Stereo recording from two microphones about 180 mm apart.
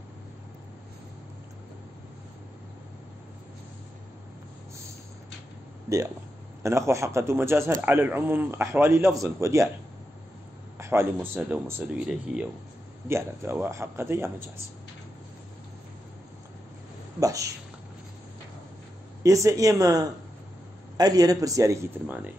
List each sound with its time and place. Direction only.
6.6 s a man's voice: 15° right (ahead or behind)
10.8 s a man's voice: 15° right (ahead or behind)
17.2 s a man's voice: 20° right (ahead or behind)
19.2 s a man's voice: 20° right (ahead or behind)